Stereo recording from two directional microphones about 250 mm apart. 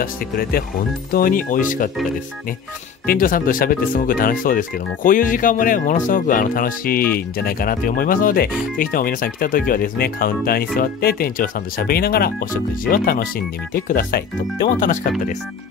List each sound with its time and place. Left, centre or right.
0.0 s speech: left
3.1 s speech: left